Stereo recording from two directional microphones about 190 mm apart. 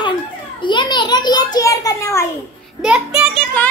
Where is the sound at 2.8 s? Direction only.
5° right (ahead or behind).